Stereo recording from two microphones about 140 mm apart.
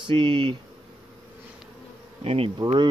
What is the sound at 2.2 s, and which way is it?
Bee, 45° right (ahead or behind).